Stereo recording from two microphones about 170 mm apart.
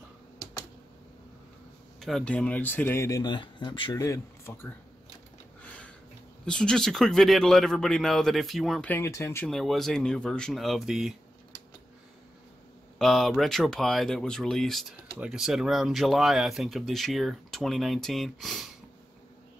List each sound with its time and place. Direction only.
2.0 s speech: centre (ahead or behind); by 4.0 s 25° left (ahead or behind)
4.0 s speech: 15° left (ahead or behind)
5.6 s a sound: 5° left (ahead or behind)
6.4 s speech: 5° left (ahead or behind)
8.9 s speech: 15° left (ahead or behind)
9.5 s speech: centre (ahead or behind)
13.0 s speech: centre (ahead or behind)